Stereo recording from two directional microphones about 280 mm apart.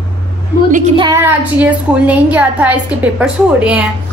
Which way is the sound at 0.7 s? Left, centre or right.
Right.